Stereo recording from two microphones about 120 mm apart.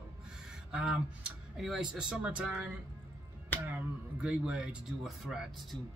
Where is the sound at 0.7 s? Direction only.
5° right (ahead or behind).